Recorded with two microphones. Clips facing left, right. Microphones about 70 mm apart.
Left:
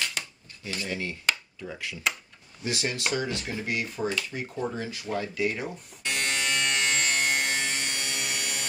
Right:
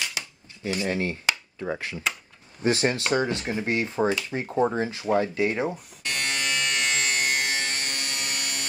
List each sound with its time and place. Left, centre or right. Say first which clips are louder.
0.8 s speech: right 2 dB; right
6.0 s electric shaver: even; centre